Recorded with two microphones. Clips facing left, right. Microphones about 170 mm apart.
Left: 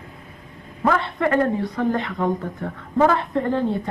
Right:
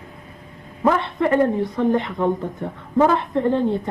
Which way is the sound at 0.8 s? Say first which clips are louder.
Right 2 dB; 20° right (ahead or behind).